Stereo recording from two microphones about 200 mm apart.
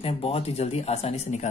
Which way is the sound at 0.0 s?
30° left (ahead or behind).